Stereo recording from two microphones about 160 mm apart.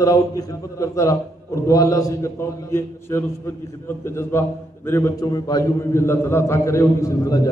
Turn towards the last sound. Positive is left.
turn(degrees=20)  # may be behind; listen again after turning